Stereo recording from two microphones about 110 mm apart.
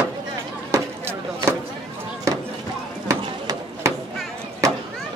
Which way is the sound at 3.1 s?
25° right (ahead or behind).